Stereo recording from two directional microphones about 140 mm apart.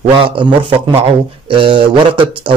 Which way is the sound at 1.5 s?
40° right (ahead or behind).